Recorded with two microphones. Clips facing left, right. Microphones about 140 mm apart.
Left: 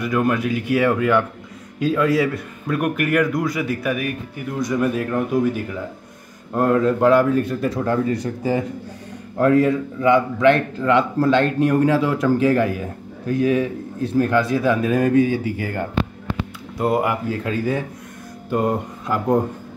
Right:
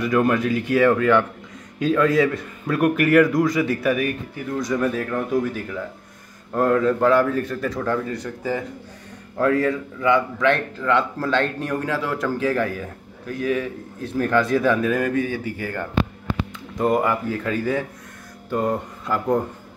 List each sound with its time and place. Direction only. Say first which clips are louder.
0.0 s a man's voice: right 1 dB; 5° left (ahead or behind)
6.5 s a man's voice: left 1 dB; 10° left (ahead or behind)
14.3 s speech: even; 5° left (ahead or behind)
14.8 s a man's voice: left 5 dB; 25° left (ahead or behind)